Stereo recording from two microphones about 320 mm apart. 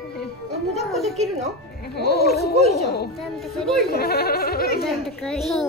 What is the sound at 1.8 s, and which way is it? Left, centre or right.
Music, left.